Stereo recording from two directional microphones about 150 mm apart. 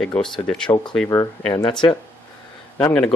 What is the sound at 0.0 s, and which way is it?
Speech, 5° left (ahead or behind).